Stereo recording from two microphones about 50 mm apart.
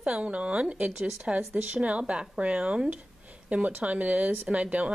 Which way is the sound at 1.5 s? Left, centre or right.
Right.